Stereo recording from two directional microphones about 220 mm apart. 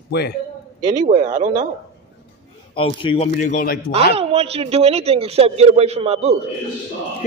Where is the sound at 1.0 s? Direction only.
25° right (ahead or behind).